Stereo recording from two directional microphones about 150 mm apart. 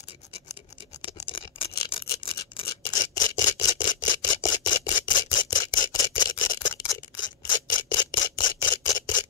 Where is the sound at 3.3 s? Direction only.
25° left (ahead or behind).